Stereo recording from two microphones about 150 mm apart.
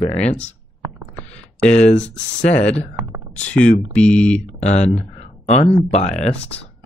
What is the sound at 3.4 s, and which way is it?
Speech, 5° left (ahead or behind).